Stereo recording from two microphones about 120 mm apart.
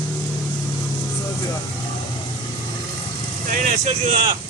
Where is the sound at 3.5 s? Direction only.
80° right.